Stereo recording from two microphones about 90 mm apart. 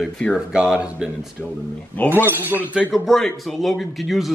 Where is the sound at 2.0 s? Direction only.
20° left (ahead or behind).